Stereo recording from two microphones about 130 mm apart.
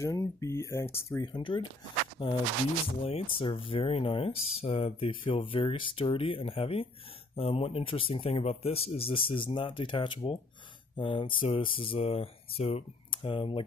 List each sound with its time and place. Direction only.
0.0 s speech: 20° left (ahead or behind)
1.2 s speech: 35° left (ahead or behind)